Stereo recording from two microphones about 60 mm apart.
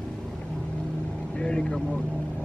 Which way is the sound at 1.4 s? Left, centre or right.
Centre.